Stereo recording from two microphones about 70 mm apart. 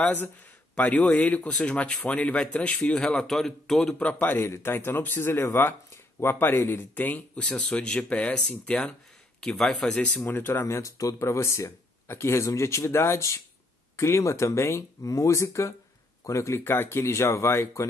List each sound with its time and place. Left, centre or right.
0.0 s a man's voice: left
3.3 s speech: centre
4.0 s a man's voice: left
4.4 s speech: left
7.4 s speech: centre
10.2 s speech: left